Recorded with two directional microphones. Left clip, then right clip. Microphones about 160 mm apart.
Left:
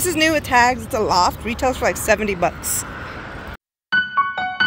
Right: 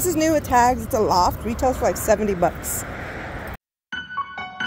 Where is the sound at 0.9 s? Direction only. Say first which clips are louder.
Even; centre (ahead or behind).